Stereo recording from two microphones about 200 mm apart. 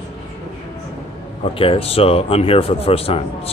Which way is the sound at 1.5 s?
25° left (ahead or behind).